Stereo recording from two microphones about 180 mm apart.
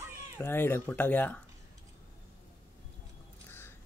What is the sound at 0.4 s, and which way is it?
Speech, 10° left (ahead or behind).